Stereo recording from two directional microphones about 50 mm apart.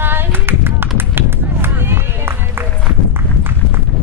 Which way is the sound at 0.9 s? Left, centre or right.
Right.